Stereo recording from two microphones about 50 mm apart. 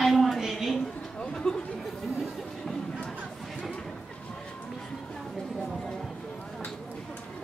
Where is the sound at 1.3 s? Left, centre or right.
Centre.